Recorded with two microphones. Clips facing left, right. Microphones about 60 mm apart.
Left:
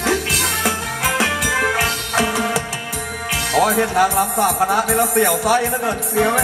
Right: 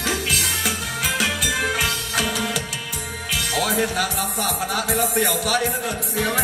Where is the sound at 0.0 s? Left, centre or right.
Left.